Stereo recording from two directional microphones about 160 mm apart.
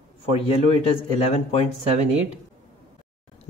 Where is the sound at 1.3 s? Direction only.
40° left (ahead or behind).